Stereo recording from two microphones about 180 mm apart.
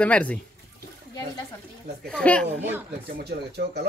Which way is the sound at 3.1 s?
70° right (ahead or behind).